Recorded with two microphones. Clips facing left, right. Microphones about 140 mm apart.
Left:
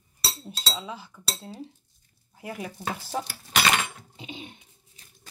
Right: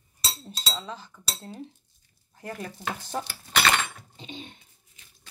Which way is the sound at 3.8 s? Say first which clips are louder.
Left 1 dB; 10° left (ahead or behind).